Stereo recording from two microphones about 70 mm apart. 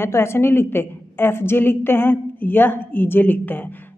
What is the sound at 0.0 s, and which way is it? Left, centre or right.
A woman's voice, left.